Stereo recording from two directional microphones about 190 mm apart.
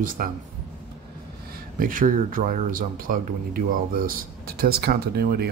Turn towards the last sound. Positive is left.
turn(degrees=-55)  # may be behind; listen again after turning